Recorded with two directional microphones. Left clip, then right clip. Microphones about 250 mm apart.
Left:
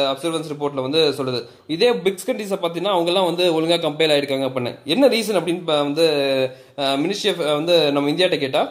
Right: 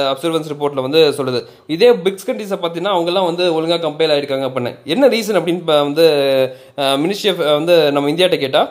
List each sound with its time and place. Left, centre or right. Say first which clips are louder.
0.0 s a man's voice: right 4 dB; centre